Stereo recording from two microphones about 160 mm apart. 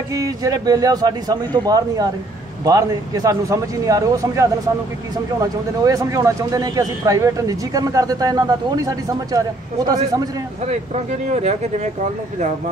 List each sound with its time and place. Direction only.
0.1 s a man's voice: 20° right (ahead or behind)
11.3 s speech: 45° right (ahead or behind)